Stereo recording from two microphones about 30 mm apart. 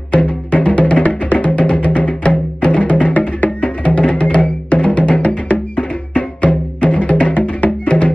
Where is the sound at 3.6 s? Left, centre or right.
Left.